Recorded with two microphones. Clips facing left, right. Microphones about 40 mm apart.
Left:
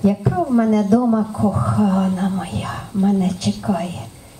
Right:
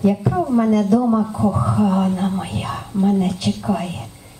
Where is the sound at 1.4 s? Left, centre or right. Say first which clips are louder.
Even; right.